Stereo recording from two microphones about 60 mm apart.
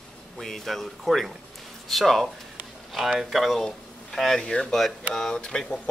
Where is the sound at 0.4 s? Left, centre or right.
Centre.